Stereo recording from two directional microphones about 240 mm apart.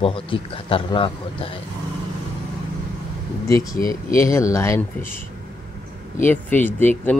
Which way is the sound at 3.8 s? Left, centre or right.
Centre.